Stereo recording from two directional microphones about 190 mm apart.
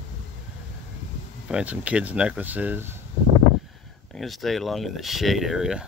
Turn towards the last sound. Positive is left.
turn(degrees=0)  # may be behind; listen again after turning